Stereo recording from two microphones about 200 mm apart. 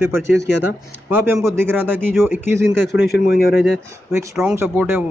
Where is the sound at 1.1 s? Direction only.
10° right (ahead or behind).